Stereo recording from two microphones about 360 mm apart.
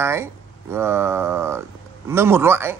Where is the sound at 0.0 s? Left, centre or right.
Centre.